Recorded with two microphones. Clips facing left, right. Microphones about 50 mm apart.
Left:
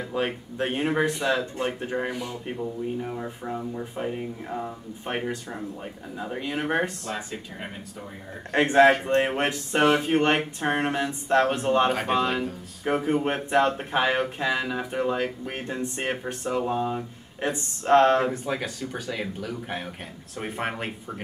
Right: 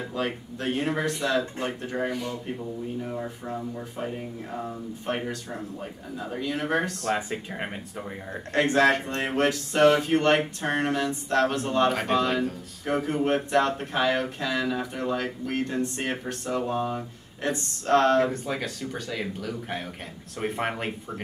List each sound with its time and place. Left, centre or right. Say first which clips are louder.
0.1 s speech: left 4 dB; left
7.2 s speech: right 4 dB; right
8.5 s speech: left 3 dB; left
11.9 s speech: even; centre
18.3 s speech: left 1 dB; centre